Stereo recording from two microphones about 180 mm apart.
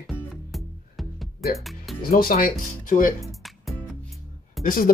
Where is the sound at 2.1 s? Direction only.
50° left (ahead or behind).